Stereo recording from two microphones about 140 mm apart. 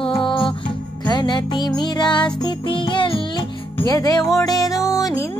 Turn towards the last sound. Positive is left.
turn(degrees=25)  # may be behind; listen again after turning